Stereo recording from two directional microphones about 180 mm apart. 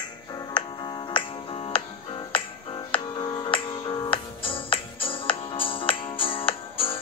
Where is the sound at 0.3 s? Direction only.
25° left (ahead or behind).